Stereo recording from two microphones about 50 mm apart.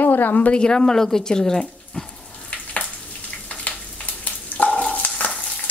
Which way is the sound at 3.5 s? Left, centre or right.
Left.